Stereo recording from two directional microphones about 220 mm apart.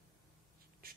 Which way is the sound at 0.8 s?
40° right (ahead or behind).